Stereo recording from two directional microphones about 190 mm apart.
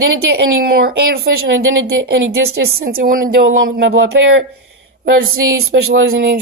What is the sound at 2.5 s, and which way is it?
Speech, 55° right (ahead or behind).